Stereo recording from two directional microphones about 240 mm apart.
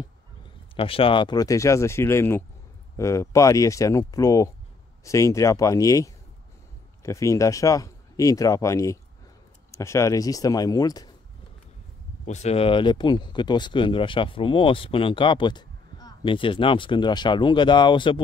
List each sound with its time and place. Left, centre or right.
0.7 s speech: left
12.3 s speech: left